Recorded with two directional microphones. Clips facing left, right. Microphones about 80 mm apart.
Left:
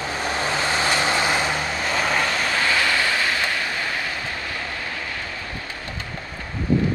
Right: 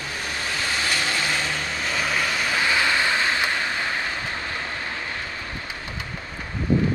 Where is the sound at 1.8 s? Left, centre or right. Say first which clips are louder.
Left 2 dB; centre; by 4.0 s right.